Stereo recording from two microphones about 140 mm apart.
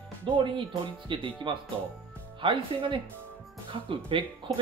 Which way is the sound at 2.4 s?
35° right (ahead or behind).